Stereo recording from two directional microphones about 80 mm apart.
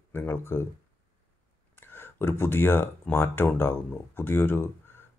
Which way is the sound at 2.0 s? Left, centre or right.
Left.